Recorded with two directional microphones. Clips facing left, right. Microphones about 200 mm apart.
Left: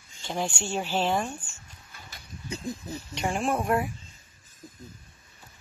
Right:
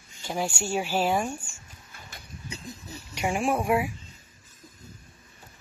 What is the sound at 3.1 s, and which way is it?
Speech, 10° right (ahead or behind).